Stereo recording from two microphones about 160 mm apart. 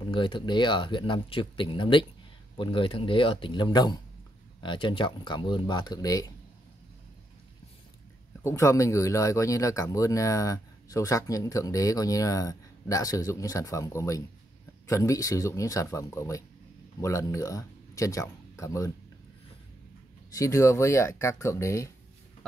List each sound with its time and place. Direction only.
0.0 s speech: 30° left (ahead or behind)
8.5 s speech: 20° left (ahead or behind)
20.2 s speech: 20° left (ahead or behind)